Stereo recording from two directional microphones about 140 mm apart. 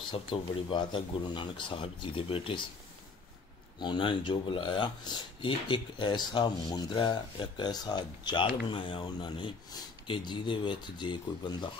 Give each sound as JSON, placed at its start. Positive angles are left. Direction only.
{"t": 0.1, "sound": "speech", "side_deg": 35}
{"t": 3.8, "sound": "speech", "side_deg": 35}